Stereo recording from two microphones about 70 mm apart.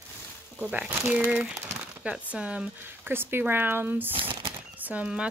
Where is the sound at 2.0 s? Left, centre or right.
Centre.